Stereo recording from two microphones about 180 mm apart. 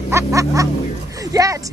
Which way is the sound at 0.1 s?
15° right (ahead or behind).